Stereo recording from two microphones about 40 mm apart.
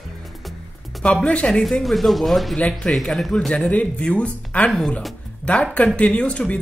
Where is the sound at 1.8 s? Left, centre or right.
Centre.